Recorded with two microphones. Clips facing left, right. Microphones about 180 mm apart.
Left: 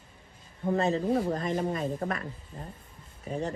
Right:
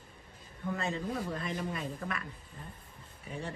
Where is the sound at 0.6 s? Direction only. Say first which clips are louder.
Left 9 dB; 35° left (ahead or behind).